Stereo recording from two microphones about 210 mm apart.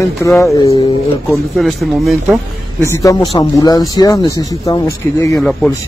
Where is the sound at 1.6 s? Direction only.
Centre (ahead or behind).